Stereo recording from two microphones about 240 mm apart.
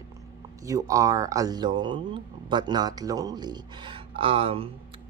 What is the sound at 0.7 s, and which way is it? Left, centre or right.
Speech, centre.